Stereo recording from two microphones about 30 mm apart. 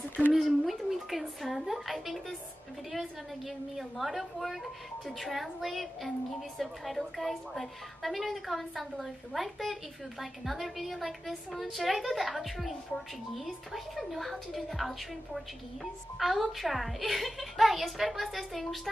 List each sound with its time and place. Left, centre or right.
0.5 s a woman's voice: centre